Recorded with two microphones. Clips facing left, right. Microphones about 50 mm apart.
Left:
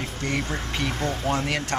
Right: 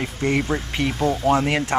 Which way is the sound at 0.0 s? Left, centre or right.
Right.